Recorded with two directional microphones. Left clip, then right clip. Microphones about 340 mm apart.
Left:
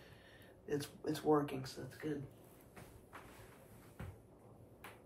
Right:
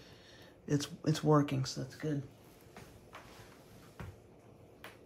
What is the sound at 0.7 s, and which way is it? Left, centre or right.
Speech, right.